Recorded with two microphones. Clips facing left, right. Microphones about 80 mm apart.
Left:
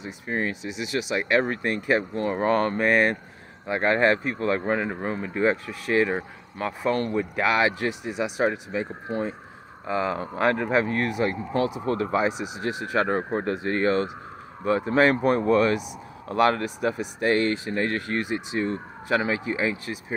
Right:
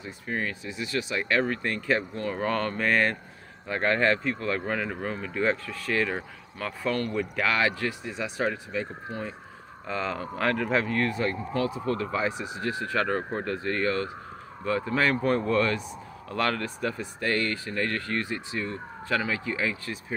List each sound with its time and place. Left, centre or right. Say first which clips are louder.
0.0 s speech: left 3 dB; left
9.1 s speech: left 9 dB; left
9.8 s speech: left 5 dB; centre